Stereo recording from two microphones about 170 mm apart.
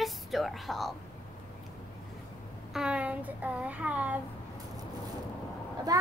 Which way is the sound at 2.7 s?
5° right (ahead or behind).